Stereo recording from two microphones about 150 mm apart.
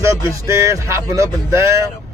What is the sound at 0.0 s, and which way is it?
Speech, 20° right (ahead or behind).